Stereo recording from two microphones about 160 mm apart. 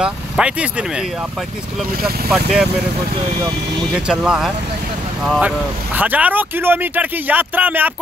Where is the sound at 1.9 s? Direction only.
70° right (ahead or behind).